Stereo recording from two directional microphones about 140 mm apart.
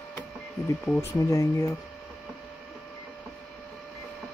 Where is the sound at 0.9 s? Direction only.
20° left (ahead or behind).